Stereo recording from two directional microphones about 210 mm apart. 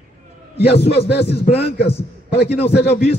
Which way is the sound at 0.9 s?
50° left (ahead or behind).